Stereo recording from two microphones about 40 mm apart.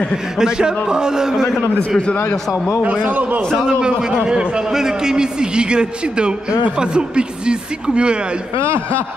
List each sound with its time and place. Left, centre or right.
0.4 s a man's voice: centre
2.8 s a man's voice: right
3.5 s a man's voice: centre
8.6 s speech: right